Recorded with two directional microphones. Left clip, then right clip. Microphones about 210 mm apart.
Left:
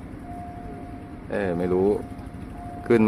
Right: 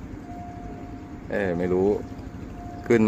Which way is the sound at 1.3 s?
Centre (ahead or behind).